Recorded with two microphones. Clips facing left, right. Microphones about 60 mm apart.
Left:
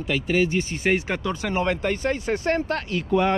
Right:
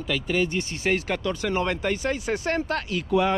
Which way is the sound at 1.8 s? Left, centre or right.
Left.